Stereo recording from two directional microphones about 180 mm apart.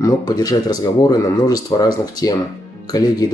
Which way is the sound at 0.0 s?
20° left (ahead or behind).